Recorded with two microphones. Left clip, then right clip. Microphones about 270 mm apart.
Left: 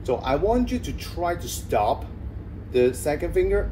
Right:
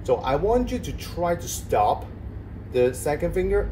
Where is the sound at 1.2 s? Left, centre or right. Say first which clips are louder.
Right 2 dB; centre.